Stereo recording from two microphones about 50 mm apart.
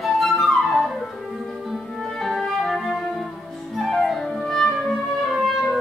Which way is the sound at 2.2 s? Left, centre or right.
Centre.